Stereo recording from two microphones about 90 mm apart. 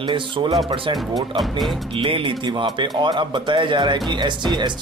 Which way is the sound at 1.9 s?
75° right (ahead or behind).